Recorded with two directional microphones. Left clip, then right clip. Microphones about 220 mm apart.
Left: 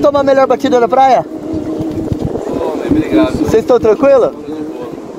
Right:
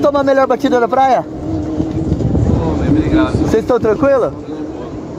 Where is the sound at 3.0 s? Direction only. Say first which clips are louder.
Left 4 dB; 25° left (ahead or behind).